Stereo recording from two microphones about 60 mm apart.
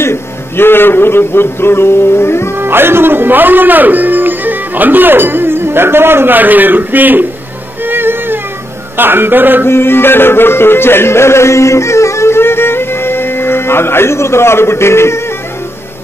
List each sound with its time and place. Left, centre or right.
0.0 s a man's voice: left
2.6 s a man's voice: right
7.8 s music: right
8.9 s a man's voice: right
9.7 s music: left